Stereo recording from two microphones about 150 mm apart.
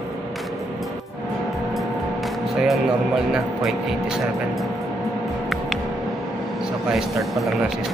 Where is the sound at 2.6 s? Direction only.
5° right (ahead or behind).